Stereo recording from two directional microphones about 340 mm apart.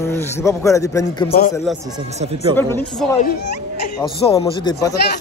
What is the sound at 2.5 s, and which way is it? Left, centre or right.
A man's voice, centre.